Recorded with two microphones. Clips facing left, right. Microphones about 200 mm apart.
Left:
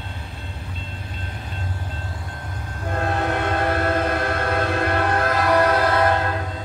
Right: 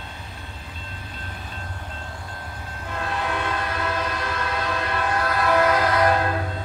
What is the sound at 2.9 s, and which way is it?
Train, 45° left (ahead or behind).